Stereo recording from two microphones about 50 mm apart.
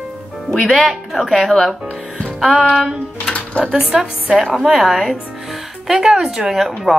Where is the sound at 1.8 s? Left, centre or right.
Centre.